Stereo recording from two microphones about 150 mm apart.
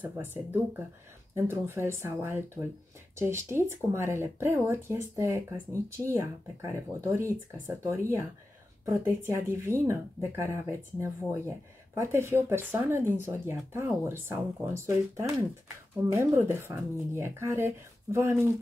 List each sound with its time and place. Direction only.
0.0 s speech: 15° right (ahead or behind)